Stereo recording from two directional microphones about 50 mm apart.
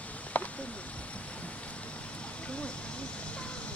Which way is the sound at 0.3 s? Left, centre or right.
Left.